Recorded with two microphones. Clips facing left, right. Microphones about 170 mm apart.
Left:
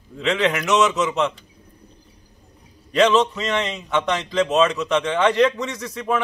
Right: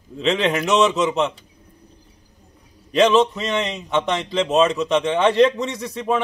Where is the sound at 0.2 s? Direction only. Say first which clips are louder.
Right 1 dB; 30° right (ahead or behind).